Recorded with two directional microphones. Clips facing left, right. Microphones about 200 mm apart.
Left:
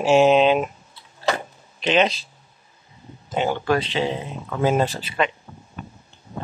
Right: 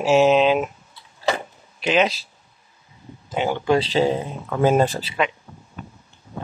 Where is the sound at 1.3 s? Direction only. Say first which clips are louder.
Even; 5° right (ahead or behind).